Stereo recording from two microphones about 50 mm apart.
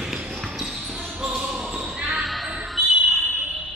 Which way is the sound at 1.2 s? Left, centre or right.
Centre.